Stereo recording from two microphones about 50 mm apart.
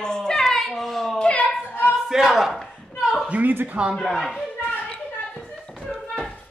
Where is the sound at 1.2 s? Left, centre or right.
Left.